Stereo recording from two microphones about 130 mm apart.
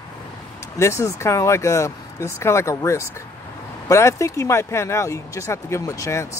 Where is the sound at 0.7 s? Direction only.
20° left (ahead or behind).